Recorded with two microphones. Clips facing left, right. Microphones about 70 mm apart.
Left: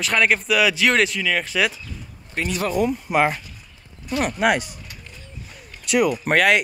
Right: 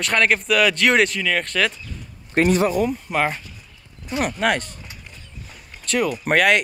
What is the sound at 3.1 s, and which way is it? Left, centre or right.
Speech, centre.